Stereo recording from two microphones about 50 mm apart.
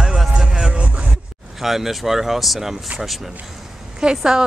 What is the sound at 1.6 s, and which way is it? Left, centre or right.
Speech, centre.